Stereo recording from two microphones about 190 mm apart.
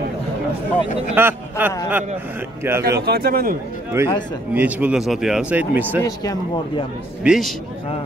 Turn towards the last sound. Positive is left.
turn(degrees=-5)  # may be behind; listen again after turning